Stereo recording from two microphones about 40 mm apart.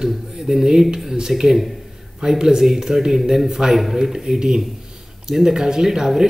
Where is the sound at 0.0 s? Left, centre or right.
Centre.